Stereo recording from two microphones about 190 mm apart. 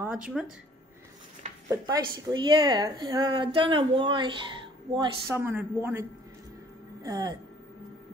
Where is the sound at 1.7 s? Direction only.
20° right (ahead or behind).